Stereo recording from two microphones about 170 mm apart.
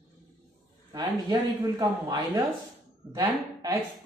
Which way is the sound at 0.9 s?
25° right (ahead or behind).